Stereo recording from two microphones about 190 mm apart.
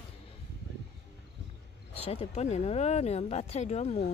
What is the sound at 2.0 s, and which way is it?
Speech, 35° left (ahead or behind).